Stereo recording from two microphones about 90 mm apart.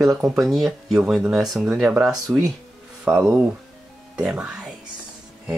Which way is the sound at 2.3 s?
15° right (ahead or behind).